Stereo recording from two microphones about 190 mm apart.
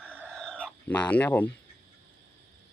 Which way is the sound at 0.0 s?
5° right (ahead or behind).